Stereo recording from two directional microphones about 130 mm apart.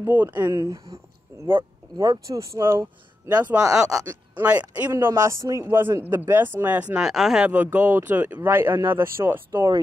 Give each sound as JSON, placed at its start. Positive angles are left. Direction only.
{"t": 0.0, "sound": "speech", "side_deg": -15}
{"t": 0.5, "sound": "speech", "side_deg": -30}
{"t": 4.9, "sound": "speech", "side_deg": -25}